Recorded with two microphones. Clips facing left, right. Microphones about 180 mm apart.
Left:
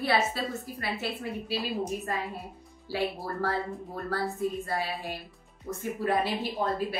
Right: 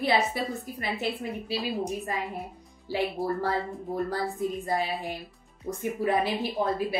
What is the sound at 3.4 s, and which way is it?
A woman's voice, 15° right (ahead or behind).